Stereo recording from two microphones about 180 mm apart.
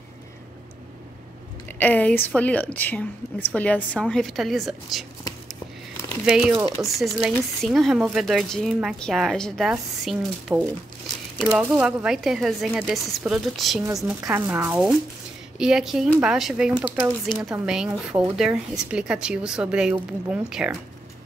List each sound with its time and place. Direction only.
1.7 s a woman's voice: 10° left (ahead or behind)
6.2 s speech: 5° right (ahead or behind)
6.5 s speech: 25° right (ahead or behind)
7.0 s speech: centre (ahead or behind)
14.2 s speech: 10° right (ahead or behind)